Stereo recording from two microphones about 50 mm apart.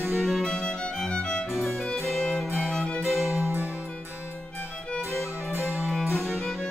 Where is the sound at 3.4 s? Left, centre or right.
Right.